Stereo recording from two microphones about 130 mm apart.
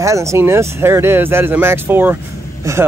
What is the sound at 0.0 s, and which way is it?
Speech, 25° right (ahead or behind).